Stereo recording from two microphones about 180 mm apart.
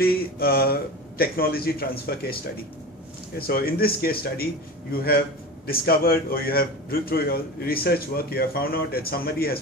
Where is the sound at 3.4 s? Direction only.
55° left (ahead or behind).